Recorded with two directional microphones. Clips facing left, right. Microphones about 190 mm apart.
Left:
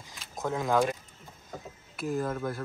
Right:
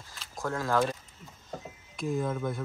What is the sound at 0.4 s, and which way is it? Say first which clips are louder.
Speech: left 1 dB; 20° left (ahead or behind).